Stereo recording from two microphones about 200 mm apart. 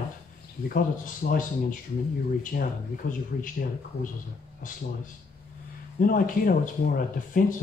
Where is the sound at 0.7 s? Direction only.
40° left (ahead or behind).